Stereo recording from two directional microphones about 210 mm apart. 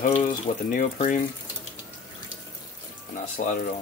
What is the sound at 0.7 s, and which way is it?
Speech, 40° left (ahead or behind).